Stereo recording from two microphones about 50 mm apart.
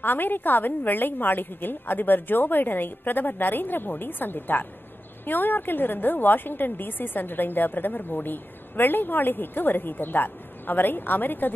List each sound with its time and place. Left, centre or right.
0.0 s a woman's voice: left